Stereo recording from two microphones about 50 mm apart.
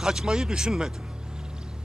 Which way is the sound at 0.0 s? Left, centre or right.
Centre.